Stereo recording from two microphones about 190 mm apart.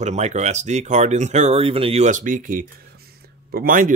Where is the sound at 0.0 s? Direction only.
40° right (ahead or behind).